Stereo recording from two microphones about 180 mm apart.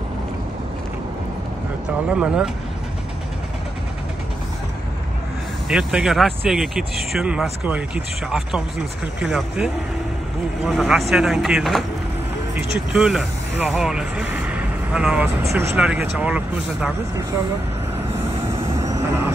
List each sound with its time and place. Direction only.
2.0 s speech: 5° right (ahead or behind)
5.7 s speech: 5° right (ahead or behind)
18.8 s vehicle: 15° right (ahead or behind)